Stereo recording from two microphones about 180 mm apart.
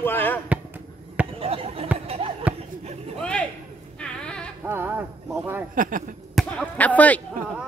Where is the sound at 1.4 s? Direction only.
35° right (ahead or behind).